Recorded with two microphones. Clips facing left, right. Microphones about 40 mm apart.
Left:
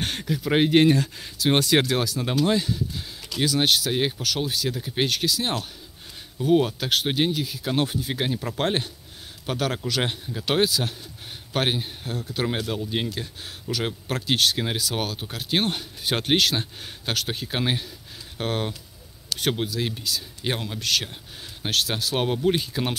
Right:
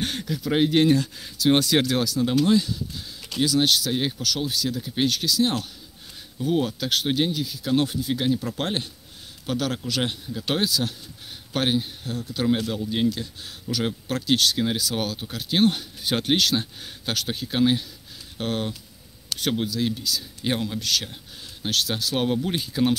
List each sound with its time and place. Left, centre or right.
0.0 s speech: left
14.1 s speech: left
20.4 s speech: centre